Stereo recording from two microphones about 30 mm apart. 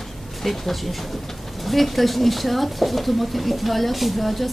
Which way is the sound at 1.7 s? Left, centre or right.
Centre.